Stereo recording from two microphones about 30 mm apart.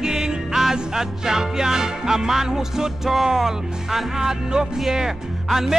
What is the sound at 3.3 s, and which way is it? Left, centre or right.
Speech, centre.